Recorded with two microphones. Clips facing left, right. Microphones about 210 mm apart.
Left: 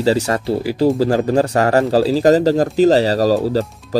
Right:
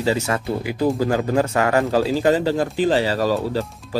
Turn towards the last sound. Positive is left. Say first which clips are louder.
# left 6 dB
turn(degrees=40)  # may be behind; listen again after turning